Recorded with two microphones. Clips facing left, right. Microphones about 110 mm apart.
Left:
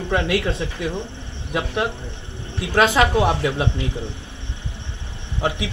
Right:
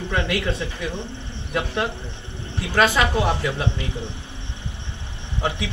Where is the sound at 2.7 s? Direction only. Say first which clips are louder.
Left 2 dB; 20° left (ahead or behind).